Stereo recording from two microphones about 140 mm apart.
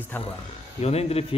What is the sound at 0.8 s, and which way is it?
Speech, 45° left (ahead or behind).